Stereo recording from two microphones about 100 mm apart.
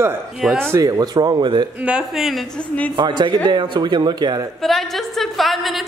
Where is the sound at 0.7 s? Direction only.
35° right (ahead or behind).